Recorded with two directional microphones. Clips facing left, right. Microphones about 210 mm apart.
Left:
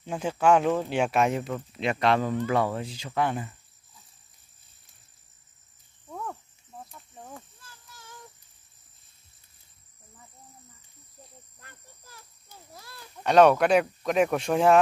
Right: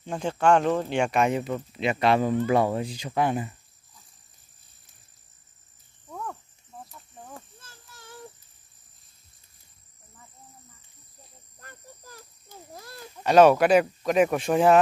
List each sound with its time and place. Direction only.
0.0 s speech: 5° left (ahead or behind); by 3.5 s 15° right (ahead or behind)
11.6 s a sound: 45° right (ahead or behind)
13.2 s speech: 5° right (ahead or behind)